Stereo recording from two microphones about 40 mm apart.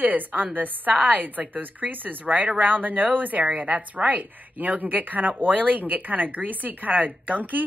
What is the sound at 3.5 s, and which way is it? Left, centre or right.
Speech, right.